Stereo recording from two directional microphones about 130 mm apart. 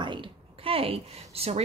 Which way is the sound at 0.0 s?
40° right (ahead or behind).